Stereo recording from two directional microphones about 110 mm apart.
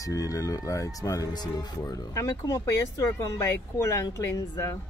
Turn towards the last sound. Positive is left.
turn(degrees=25)  # may be behind; listen again after turning